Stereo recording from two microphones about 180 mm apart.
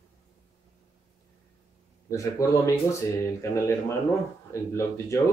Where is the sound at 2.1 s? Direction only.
15° left (ahead or behind).